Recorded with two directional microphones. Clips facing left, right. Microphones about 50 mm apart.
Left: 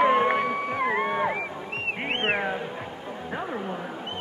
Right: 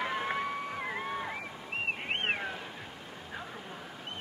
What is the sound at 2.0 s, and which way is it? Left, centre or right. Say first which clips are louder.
Music: left 7 dB; left.